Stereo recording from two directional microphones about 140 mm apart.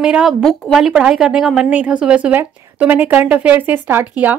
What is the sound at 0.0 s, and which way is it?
A woman's voice, 5° right (ahead or behind).